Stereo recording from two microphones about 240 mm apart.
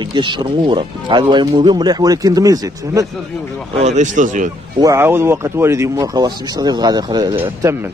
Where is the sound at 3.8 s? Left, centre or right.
Right.